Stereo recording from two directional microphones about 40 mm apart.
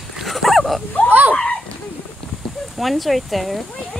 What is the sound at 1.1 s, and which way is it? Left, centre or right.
Speech, right.